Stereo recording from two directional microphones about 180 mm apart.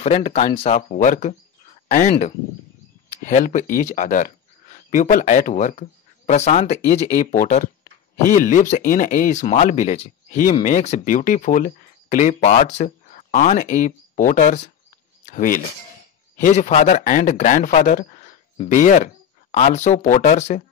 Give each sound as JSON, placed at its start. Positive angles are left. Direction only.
{"t": 0.0, "sound": "speech", "side_deg": 40}